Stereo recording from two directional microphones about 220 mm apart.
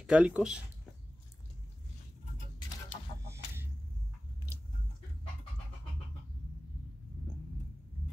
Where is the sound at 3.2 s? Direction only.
10° right (ahead or behind).